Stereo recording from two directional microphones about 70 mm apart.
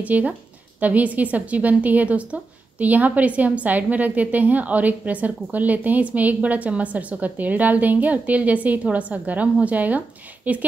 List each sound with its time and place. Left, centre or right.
0.0 s a woman's voice: right